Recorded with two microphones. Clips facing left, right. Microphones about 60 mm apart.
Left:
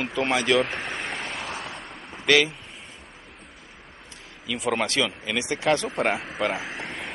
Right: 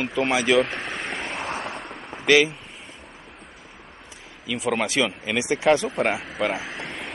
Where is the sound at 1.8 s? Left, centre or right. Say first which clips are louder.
Right 2 dB; centre.